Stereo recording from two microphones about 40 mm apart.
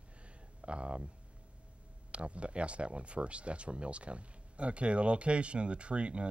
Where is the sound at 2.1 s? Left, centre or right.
Right.